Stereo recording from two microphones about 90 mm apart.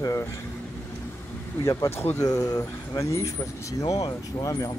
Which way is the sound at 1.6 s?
40° left (ahead or behind).